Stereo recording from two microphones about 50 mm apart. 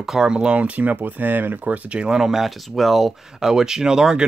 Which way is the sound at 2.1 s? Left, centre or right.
Centre.